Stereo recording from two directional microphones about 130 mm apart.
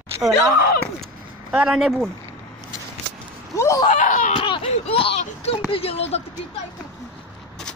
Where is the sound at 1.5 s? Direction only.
5° right (ahead or behind).